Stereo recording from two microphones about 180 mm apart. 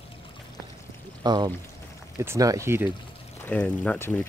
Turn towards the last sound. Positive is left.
turn(degrees=5)  # may be behind; listen again after turning